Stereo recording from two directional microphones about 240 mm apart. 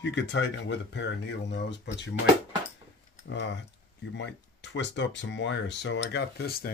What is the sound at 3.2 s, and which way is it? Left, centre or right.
Speech, left.